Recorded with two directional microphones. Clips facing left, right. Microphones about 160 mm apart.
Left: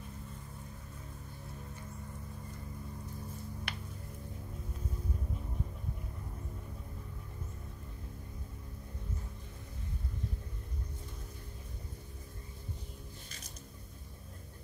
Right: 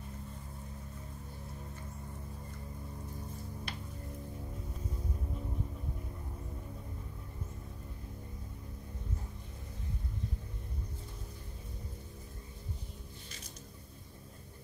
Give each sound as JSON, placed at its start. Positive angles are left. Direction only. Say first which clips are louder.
{"t": 3.7, "sound": "music", "louder": "even", "side_deg": 70}